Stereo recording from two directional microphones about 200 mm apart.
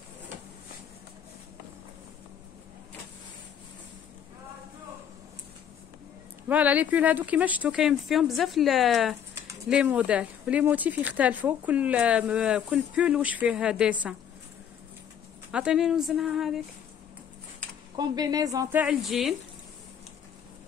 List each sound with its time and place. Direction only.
6.5 s speech: 10° right (ahead or behind)
15.5 s speech: 5° right (ahead or behind)
17.9 s speech: 20° right (ahead or behind); by 19.3 s centre (ahead or behind)